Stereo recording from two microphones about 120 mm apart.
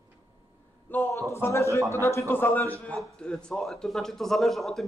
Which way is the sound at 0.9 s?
15° left (ahead or behind).